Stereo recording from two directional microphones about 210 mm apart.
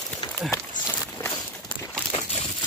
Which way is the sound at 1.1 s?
10° left (ahead or behind).